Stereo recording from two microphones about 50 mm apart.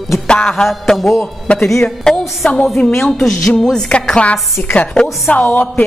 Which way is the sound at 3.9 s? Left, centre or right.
Left.